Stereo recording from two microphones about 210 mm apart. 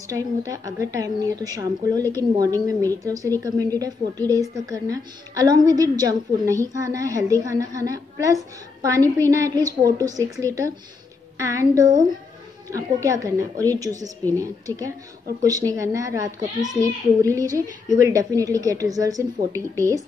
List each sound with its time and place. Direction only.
0.1 s a child's voice: 15° right (ahead or behind)